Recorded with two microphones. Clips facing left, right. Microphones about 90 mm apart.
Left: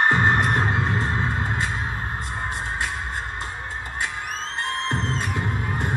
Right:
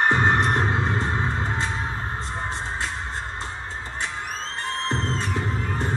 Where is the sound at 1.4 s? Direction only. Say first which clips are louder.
Even; 25° right (ahead or behind).